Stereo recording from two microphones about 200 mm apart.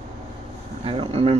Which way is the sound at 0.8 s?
30° right (ahead or behind).